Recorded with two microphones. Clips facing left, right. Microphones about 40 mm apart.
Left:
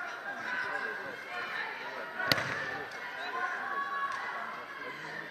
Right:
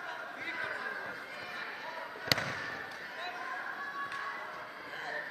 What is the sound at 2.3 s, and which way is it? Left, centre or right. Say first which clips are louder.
Fireworks: left 1 dB; centre.